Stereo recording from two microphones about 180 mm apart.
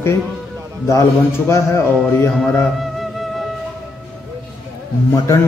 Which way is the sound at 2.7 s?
Centre (ahead or behind).